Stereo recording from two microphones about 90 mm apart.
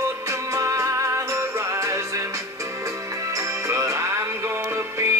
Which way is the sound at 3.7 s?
35° right (ahead or behind).